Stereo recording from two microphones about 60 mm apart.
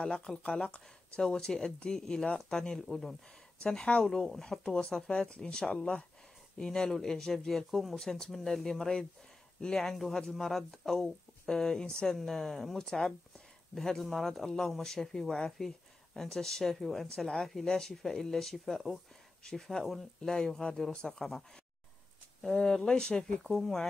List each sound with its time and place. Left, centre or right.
0.4 s speech: centre
3.6 s speech: centre
4.0 s speech: centre
23.4 s speech: centre